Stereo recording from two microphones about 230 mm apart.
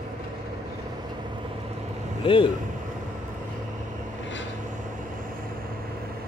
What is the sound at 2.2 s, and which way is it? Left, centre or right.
Speech, left.